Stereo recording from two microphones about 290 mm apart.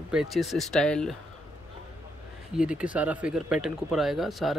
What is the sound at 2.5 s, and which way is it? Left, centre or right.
Speech, centre.